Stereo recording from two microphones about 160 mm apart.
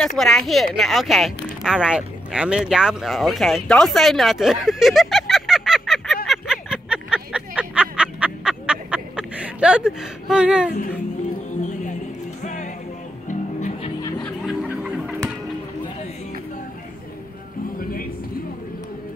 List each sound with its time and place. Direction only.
0.2 s speech: centre (ahead or behind)
6.2 s a sound: centre (ahead or behind)
10.7 s speech: 55° left (ahead or behind)
12.4 s music: 50° left (ahead or behind)
14.4 s music: 5° right (ahead or behind)